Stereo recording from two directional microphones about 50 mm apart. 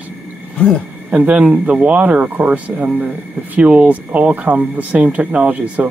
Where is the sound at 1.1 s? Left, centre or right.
Right.